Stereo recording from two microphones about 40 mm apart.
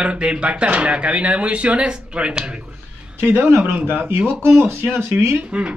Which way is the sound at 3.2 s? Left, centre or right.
Right.